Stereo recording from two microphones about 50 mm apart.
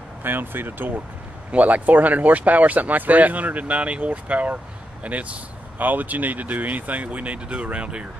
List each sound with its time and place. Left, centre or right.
0.2 s speech: right
1.5 s speech: right